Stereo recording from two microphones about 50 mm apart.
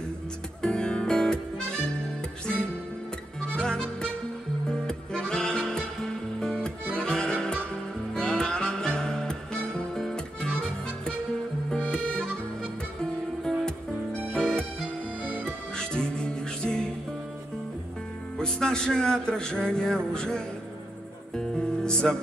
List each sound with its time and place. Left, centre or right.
0.6 s music: centre
3.4 s music: centre
11.8 s music: left
13.0 s music: centre
15.2 s music: right
15.8 s music: centre
18.4 s music: centre